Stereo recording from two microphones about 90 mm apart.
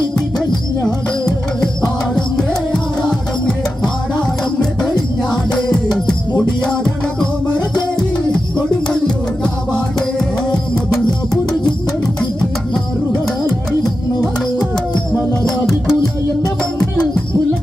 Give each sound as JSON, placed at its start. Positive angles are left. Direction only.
{"t": 0.8, "sound": "music", "side_deg": 10}
{"t": 8.8, "sound": "music", "side_deg": 10}
{"t": 15.9, "sound": "music", "side_deg": 35}